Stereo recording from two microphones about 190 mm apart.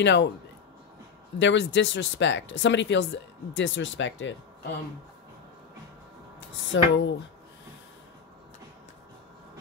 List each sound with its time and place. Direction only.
0.0 s speech: 70° left (ahead or behind)
1.4 s speech: 70° left (ahead or behind)
6.7 s speech: 70° left (ahead or behind)